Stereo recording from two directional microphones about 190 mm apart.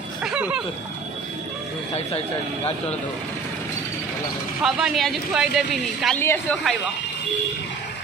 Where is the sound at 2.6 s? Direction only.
30° left (ahead or behind).